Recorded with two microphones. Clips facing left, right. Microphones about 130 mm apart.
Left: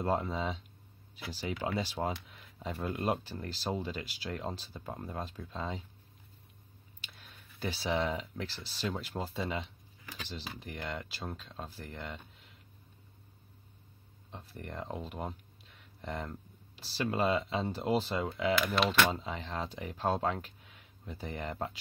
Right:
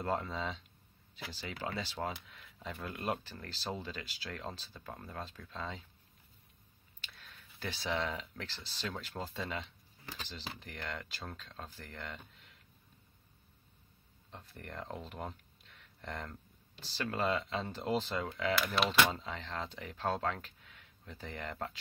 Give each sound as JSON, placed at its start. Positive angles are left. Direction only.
{"t": 0.0, "sound": "speech", "side_deg": 15}
{"t": 2.7, "sound": "speech", "side_deg": 25}
{"t": 3.3, "sound": "speech", "side_deg": 10}
{"t": 7.0, "sound": "a sound", "side_deg": 15}
{"t": 8.2, "sound": "speech", "side_deg": 10}
{"t": 14.3, "sound": "speech", "side_deg": 5}
{"t": 19.0, "sound": "speech", "side_deg": 15}